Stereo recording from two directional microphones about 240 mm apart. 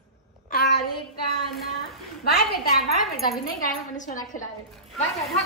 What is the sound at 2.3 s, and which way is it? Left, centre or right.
A woman's voice, left.